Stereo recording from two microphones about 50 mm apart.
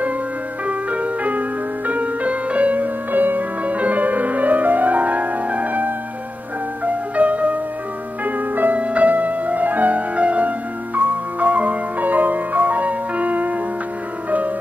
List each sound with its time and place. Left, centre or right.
0.7 s music: right